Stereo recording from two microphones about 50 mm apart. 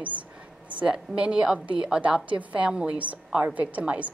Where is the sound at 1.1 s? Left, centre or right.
Centre.